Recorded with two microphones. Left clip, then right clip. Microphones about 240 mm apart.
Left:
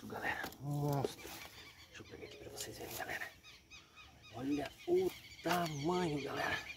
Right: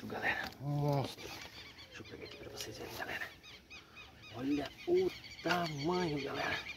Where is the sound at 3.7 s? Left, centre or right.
Right.